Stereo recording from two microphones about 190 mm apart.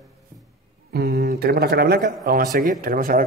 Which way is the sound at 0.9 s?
60° right (ahead or behind).